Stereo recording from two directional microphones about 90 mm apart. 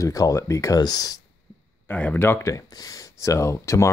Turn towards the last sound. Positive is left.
turn(degrees=35)  # may be behind; listen again after turning